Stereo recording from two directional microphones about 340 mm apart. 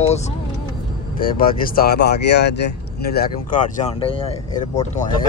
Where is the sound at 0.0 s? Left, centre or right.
Centre.